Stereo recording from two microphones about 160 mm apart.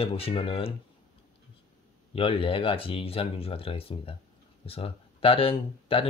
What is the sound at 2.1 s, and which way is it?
Speech, 35° left (ahead or behind).